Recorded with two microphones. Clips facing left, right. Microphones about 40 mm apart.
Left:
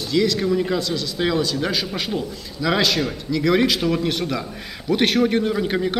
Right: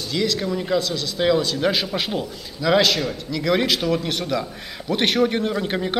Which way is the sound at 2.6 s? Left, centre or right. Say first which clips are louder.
Right 2 dB; centre.